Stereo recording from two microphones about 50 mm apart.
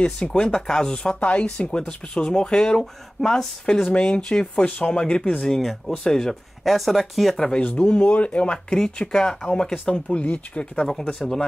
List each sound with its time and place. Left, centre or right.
0.0 s speech: centre
3.9 s speech: centre
5.6 s speech: centre
6.6 s speech: centre
7.3 s speech: centre
10.2 s speech: left
11.1 s speech: centre